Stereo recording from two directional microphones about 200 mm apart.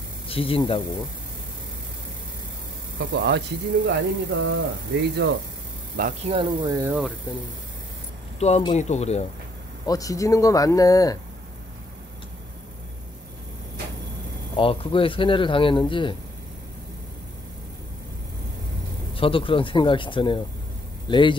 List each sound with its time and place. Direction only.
0.3 s speech: 25° left (ahead or behind)
3.1 s speech: 60° right (ahead or behind)
5.9 s a man's voice: 40° right (ahead or behind)
6.3 s speech: 20° right (ahead or behind)
8.4 s speech: 30° left (ahead or behind)
9.8 s speech: 15° left (ahead or behind)
14.6 s speech: 25° left (ahead or behind)
19.1 s speech: 25° left (ahead or behind)